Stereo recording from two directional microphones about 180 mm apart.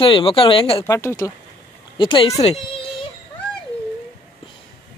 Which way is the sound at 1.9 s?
25° left (ahead or behind).